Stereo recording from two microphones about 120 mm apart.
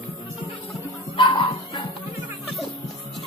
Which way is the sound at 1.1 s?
50° left (ahead or behind).